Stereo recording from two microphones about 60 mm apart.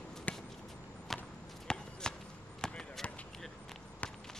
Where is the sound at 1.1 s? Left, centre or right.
Centre.